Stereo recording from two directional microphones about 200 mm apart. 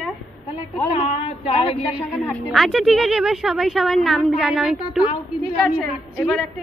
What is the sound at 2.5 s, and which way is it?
A woman's voice, centre (ahead or behind).